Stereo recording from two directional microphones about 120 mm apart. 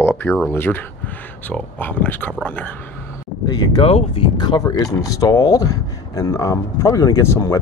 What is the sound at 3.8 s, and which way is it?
Speech, 50° left (ahead or behind).